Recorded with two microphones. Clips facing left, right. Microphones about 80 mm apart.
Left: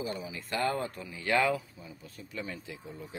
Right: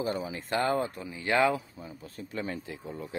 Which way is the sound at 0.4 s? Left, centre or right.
Right.